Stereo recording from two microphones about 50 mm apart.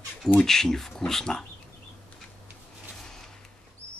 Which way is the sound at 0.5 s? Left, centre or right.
Centre.